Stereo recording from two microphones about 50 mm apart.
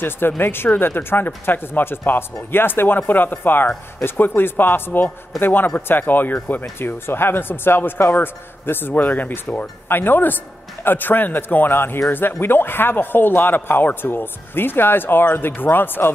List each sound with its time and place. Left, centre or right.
0.4 s a man's voice: left
9.8 s speech: left